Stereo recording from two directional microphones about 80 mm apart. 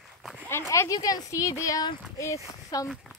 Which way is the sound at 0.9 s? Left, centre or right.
Left.